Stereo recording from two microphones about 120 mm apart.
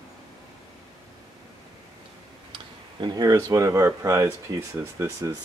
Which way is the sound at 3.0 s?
35° right (ahead or behind).